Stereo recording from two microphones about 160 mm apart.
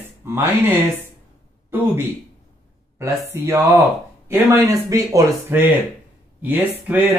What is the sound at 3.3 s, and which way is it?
Speech, 15° right (ahead or behind).